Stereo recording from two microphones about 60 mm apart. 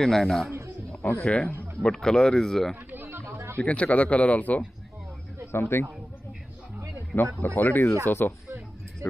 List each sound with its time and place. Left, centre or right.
0.0 s a man's voice: centre
1.2 s speech: left
1.8 s speech: centre
2.9 s chatter: right
3.5 s speech: left
5.5 s speech: left
7.1 s speech: centre
7.4 s speech: left